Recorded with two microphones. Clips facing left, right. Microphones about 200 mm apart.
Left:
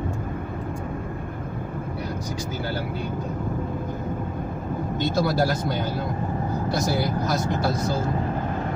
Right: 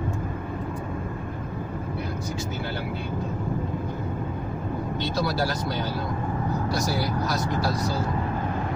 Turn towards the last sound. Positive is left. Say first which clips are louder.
# left 2 dB
turn(degrees=50)  # may be behind; listen again after turning